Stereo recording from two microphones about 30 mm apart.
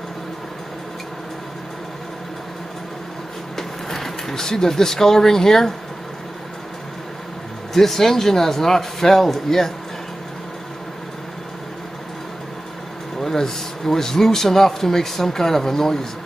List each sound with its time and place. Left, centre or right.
3.5 s speech: centre
7.7 s speech: centre
13.2 s speech: centre